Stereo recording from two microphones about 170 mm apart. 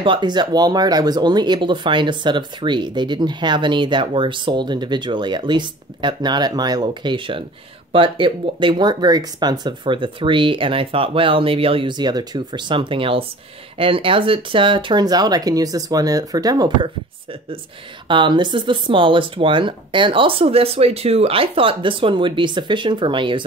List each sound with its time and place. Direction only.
0.0 s speech: 30° right (ahead or behind)